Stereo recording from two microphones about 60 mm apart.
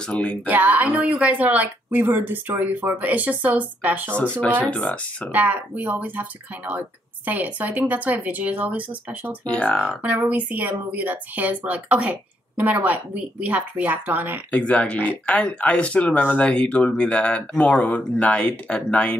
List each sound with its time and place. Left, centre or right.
0.0 s speech: centre
0.5 s speech: right
4.2 s speech: left
5.3 s speech: right
9.4 s speech: left
9.8 s speech: right
14.5 s speech: centre